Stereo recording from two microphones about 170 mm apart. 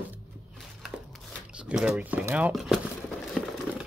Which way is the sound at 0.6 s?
Centre (ahead or behind).